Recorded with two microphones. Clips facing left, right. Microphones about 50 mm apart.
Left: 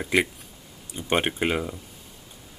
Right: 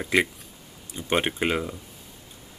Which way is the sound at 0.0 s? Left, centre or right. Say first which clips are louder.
Even; centre.